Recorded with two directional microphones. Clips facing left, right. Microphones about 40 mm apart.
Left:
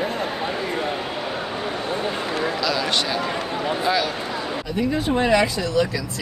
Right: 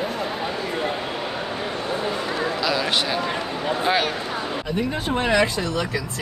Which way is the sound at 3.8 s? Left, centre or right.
Right.